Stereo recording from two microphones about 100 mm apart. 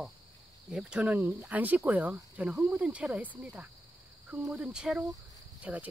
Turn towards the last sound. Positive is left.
turn(degrees=-15)  # may be behind; listen again after turning